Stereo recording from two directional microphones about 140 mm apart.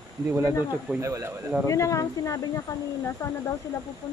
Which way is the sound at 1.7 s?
20° left (ahead or behind).